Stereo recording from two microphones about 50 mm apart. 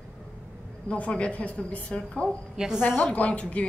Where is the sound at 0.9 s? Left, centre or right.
Left.